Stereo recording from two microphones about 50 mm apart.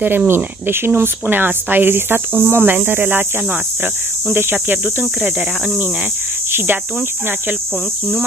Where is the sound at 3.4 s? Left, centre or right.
Right.